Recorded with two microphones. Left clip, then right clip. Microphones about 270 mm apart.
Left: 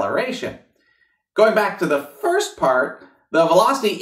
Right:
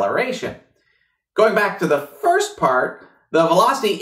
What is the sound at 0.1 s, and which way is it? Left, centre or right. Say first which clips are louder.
Speech: right 1 dB; left.